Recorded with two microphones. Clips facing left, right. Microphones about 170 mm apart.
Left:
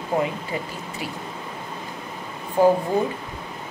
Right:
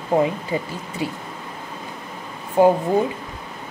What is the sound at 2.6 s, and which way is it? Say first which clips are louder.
Speech: right 2 dB; 20° right (ahead or behind).